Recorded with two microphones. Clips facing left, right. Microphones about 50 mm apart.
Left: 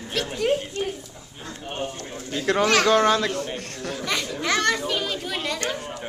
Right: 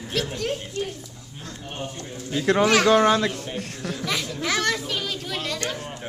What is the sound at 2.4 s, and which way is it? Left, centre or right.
Speech, centre.